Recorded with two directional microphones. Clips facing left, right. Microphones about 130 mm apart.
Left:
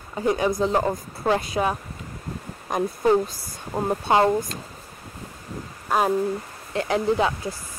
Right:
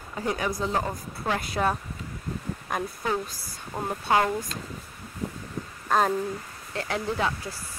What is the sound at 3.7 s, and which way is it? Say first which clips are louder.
Speech: left 4 dB; 30° left (ahead or behind).